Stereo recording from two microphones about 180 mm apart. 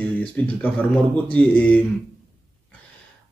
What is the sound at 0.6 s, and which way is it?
Speech, 10° left (ahead or behind).